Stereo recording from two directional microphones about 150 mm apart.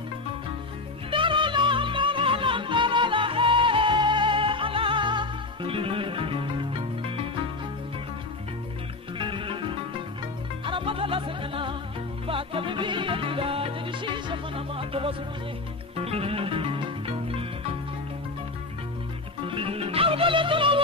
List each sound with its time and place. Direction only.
1.1 s music: 35° right (ahead or behind)
9.2 s music: 35° right (ahead or behind)
19.4 s music: 40° right (ahead or behind)